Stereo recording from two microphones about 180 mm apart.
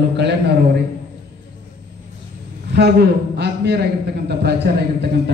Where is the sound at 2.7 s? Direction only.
65° right (ahead or behind).